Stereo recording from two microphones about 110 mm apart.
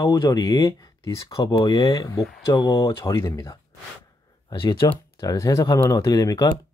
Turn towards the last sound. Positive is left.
turn(degrees=35)  # may be behind; listen again after turning